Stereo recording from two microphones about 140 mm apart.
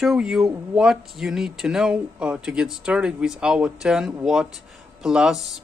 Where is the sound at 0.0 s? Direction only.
Centre (ahead or behind).